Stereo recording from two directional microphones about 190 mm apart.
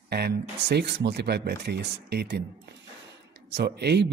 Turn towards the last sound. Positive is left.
turn(degrees=-60)  # may be behind; listen again after turning